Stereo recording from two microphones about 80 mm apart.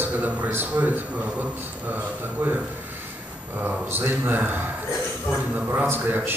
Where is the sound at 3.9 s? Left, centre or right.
Right.